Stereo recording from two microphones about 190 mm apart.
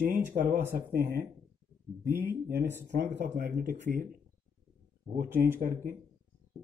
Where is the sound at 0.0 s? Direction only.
45° right (ahead or behind).